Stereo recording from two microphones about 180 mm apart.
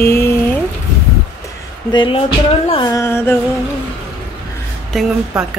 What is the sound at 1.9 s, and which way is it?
Music, 25° left (ahead or behind).